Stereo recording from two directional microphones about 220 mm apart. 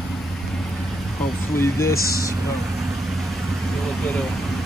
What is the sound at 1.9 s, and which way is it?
Speech, 45° left (ahead or behind).